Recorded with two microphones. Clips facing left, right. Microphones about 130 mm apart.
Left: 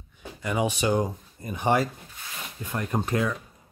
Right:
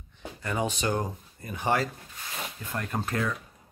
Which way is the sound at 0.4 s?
10° left (ahead or behind).